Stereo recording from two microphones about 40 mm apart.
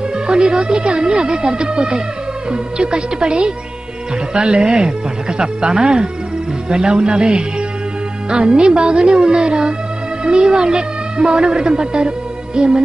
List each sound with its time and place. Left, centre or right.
0.3 s a woman's voice: right